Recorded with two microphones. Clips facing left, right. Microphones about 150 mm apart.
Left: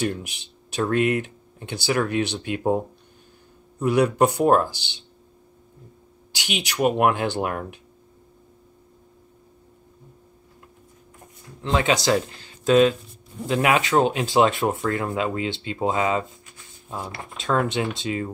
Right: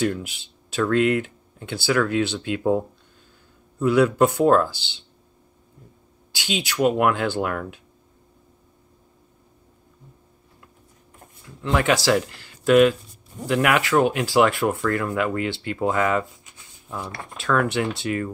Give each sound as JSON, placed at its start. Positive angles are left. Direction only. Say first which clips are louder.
{"t": 0.1, "sound": "speech", "louder": "right 2 dB", "side_deg": 20}
{"t": 3.8, "sound": "speech", "louder": "right 1 dB", "side_deg": 20}
{"t": 6.3, "sound": "speech", "louder": "right 2 dB", "side_deg": 20}
{"t": 11.6, "sound": "speech", "louder": "right 1 dB", "side_deg": 20}
{"t": 17.4, "sound": "speech", "louder": "right 1 dB", "side_deg": 20}